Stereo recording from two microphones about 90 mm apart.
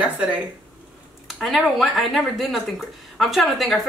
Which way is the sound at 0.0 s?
15° right (ahead or behind).